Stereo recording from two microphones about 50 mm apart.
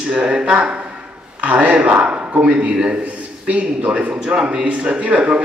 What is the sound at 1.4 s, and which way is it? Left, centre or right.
A man's voice, right.